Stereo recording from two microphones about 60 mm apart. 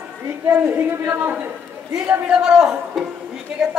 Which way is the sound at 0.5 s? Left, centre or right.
Right.